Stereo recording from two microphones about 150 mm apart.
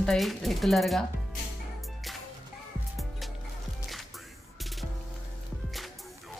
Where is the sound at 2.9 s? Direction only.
Centre (ahead or behind).